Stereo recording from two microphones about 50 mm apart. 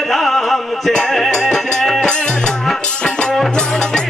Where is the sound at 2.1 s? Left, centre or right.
Centre.